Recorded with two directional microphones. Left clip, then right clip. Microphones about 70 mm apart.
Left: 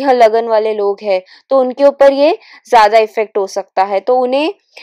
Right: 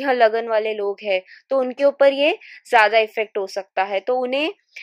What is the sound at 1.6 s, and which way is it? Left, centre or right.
Speech, centre.